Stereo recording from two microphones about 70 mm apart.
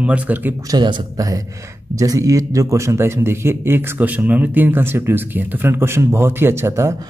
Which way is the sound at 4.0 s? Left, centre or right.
Right.